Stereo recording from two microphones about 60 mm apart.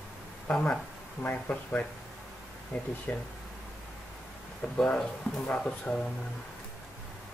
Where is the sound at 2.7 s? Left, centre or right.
Centre.